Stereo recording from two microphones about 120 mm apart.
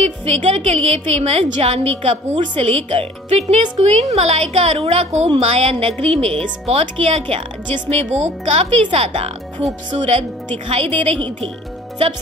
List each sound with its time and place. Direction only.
0.3 s a woman's voice: 65° right (ahead or behind); by 7.9 s 50° right (ahead or behind)
7.9 s a woman's voice: 65° right (ahead or behind)